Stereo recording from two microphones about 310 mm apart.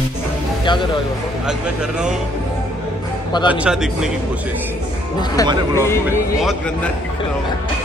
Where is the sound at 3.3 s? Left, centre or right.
Centre.